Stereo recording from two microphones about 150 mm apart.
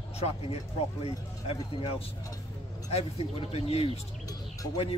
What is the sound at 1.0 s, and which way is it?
Speech, 35° left (ahead or behind).